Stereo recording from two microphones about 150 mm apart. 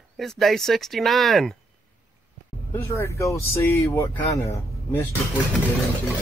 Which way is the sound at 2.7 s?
20° left (ahead or behind).